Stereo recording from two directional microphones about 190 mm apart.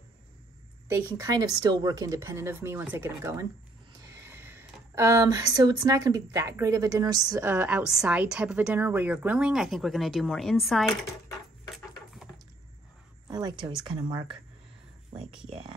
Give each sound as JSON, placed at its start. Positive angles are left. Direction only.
{"t": 0.8, "sound": "speech", "side_deg": -15}
{"t": 13.8, "sound": "speech", "side_deg": -25}
{"t": 15.1, "sound": "speech", "side_deg": -5}